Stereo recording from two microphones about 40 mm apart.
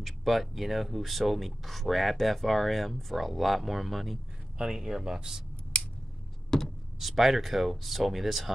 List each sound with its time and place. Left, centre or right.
0.0 s speech: centre
4.6 s speech: centre
6.5 s a sound: centre
7.0 s speech: centre